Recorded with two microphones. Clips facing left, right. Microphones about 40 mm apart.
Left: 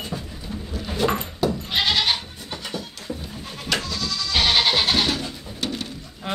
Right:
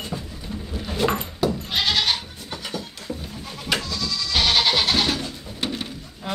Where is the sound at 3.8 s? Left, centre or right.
Left.